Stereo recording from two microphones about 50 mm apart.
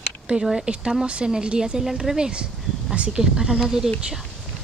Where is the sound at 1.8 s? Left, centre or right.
Centre.